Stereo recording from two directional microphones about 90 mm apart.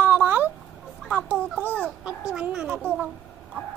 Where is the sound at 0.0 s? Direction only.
20° right (ahead or behind).